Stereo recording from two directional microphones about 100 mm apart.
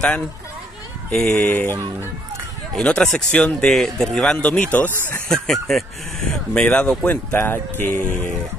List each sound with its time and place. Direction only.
1.1 s speech: 5° left (ahead or behind)
1.5 s speech: 20° left (ahead or behind)
2.7 s speech: 5° left (ahead or behind)
5.3 s speech: 5° left (ahead or behind); by 8.3 s 20° left (ahead or behind)